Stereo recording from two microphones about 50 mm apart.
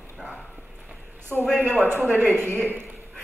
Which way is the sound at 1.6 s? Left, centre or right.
Right.